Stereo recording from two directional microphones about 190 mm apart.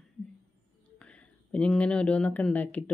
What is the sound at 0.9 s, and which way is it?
Speech, 5° left (ahead or behind).